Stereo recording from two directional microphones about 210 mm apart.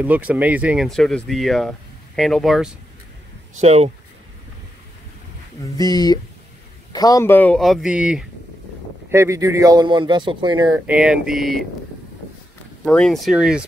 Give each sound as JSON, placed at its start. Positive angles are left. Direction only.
{"t": 0.0, "sound": "speech", "side_deg": -5}
{"t": 3.5, "sound": "speech", "side_deg": -30}
{"t": 5.6, "sound": "speech", "side_deg": 20}
{"t": 10.9, "sound": "speech", "side_deg": -5}
{"t": 12.8, "sound": "speech", "side_deg": 5}